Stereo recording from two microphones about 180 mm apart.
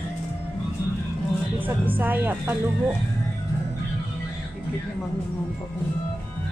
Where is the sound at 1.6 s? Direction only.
10° right (ahead or behind).